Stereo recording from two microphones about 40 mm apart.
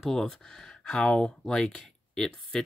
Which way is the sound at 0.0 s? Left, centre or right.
Centre.